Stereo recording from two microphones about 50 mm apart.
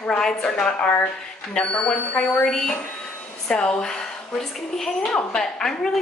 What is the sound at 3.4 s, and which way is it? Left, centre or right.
A woman's voice, left.